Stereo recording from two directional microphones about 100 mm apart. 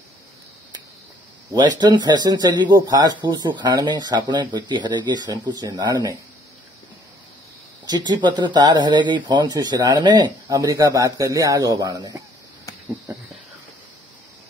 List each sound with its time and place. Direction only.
1.5 s speech: 45° right (ahead or behind)
7.8 s speech: 45° right (ahead or behind)